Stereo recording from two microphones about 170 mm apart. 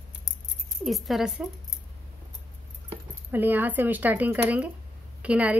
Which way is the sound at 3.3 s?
10° right (ahead or behind).